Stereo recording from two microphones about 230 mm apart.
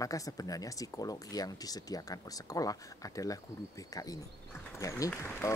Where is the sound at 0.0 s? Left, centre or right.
Centre.